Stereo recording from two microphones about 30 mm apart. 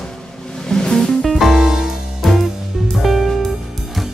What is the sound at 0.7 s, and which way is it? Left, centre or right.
Music, left.